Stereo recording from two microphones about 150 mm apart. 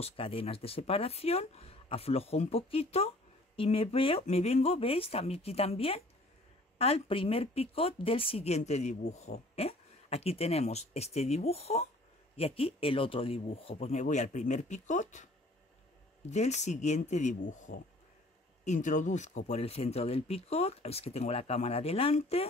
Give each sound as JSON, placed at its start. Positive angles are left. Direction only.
{"t": 0.0, "sound": "a woman's voice", "side_deg": 40}
{"t": 16.3, "sound": "a woman's voice", "side_deg": 50}